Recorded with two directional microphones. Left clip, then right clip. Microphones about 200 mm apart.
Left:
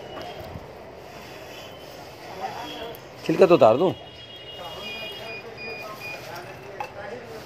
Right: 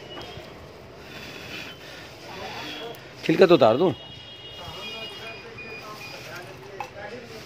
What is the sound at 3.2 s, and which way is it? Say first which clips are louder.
Speech: left 1 dB; 20° right (ahead or behind).